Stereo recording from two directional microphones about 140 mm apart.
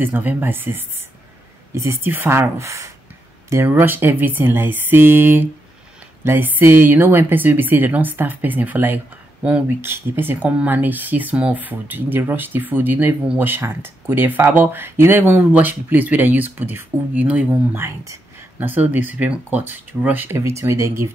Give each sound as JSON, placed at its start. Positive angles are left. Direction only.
{"t": 0.0, "sound": "speech", "side_deg": -10}